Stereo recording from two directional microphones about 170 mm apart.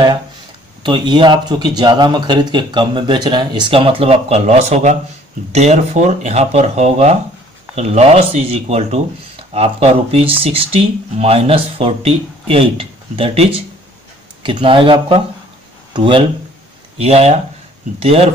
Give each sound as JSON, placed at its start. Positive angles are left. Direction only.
{"t": 0.8, "sound": "speech", "side_deg": -25}